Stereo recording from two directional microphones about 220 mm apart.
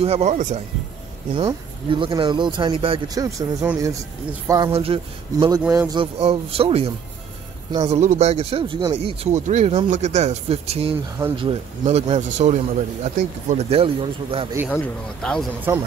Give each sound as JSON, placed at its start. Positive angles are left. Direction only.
{"t": 0.0, "sound": "speech", "side_deg": -30}
{"t": 6.1, "sound": "speech", "side_deg": -25}
{"t": 7.9, "sound": "speech", "side_deg": -30}
{"t": 15.7, "sound": "speech", "side_deg": -10}